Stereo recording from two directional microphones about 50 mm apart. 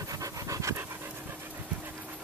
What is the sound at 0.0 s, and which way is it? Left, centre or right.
Pant, right.